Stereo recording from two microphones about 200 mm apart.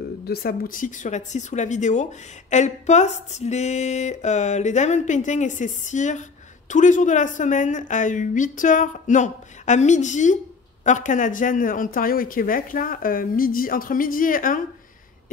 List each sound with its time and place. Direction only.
0.2 s speech: 50° left (ahead or behind)